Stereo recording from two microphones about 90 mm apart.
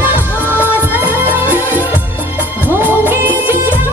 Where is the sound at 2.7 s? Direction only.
25° right (ahead or behind).